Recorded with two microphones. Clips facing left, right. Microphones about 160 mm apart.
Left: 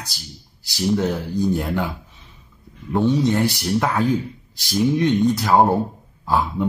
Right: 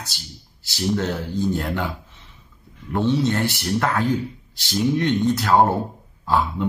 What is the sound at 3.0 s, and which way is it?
Speech, 10° left (ahead or behind).